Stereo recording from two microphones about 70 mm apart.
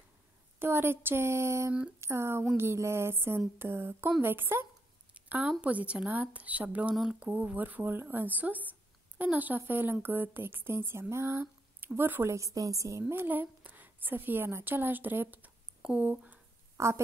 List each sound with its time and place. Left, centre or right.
0.6 s speech: right
5.1 s a sound: right
5.6 s a woman's voice: centre
12.3 s a woman's voice: right
13.1 s a woman's voice: right
16.7 s a woman's voice: right